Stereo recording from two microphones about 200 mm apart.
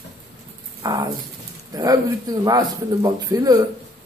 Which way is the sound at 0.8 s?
20° right (ahead or behind).